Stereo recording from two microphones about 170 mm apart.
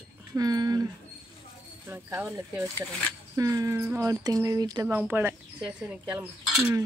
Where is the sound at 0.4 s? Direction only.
20° right (ahead or behind).